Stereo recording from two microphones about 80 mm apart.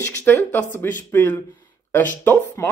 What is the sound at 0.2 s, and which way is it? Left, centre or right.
Speech, left.